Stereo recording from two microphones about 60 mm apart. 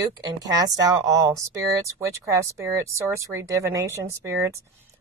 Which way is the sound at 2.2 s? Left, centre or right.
Right.